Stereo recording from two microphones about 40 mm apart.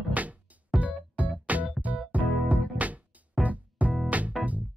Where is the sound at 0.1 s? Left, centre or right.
Right.